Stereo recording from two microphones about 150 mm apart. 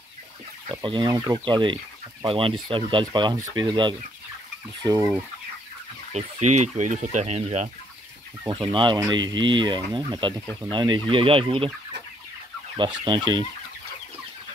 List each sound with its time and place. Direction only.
0.7 s speech: 30° right (ahead or behind)
6.1 s speech: 50° right (ahead or behind)
8.5 s speech: 30° right (ahead or behind)
13.0 s speech: 30° right (ahead or behind)